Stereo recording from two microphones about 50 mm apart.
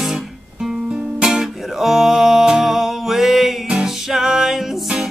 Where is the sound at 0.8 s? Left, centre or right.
Centre.